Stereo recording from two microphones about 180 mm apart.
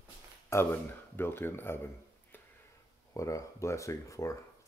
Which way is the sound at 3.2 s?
15° left (ahead or behind).